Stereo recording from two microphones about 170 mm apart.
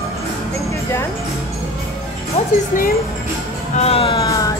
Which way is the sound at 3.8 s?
35° left (ahead or behind).